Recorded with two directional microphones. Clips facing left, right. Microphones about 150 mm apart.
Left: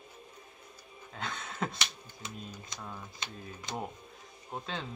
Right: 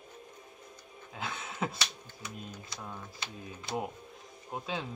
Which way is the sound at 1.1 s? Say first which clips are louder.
Even; 5° right (ahead or behind).